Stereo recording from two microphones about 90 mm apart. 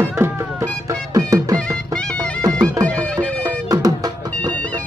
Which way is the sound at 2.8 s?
15° left (ahead or behind).